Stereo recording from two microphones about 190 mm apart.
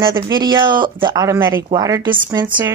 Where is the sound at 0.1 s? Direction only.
20° right (ahead or behind).